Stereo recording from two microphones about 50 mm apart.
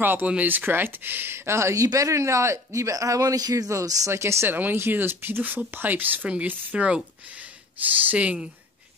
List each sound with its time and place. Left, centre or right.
0.0 s speech: right
3.7 s speech: right
4.5 s speech: right
6.4 s speech: right